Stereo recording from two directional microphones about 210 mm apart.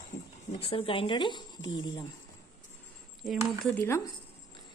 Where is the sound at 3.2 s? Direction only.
10° left (ahead or behind).